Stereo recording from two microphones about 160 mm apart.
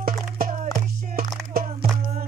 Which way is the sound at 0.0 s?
60° right (ahead or behind).